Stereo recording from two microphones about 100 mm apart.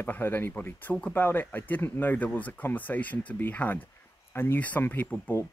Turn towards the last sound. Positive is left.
turn(degrees=20)  # may be behind; listen again after turning